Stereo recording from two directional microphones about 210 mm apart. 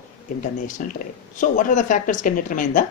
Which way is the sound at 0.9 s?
40° left (ahead or behind).